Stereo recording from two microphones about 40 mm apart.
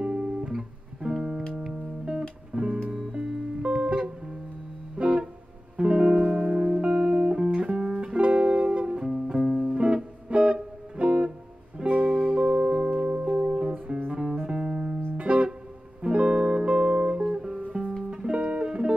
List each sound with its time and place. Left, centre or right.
0.0 s music: right
0.5 s music: centre
4.9 s guitar: right
5.8 s music: right